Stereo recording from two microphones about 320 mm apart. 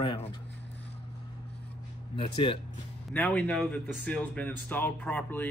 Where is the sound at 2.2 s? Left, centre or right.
Centre.